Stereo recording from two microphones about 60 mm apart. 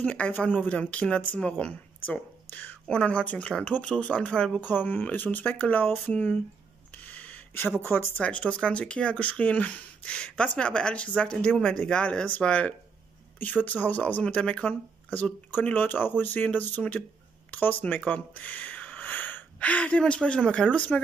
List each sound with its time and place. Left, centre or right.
0.0 s speech: left
7.0 s gasp: left
7.8 s speech: left
8.2 s speech: left